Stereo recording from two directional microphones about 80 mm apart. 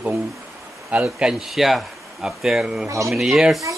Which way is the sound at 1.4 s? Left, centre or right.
Centre.